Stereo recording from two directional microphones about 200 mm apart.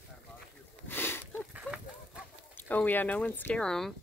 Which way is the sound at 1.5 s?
5° right (ahead or behind).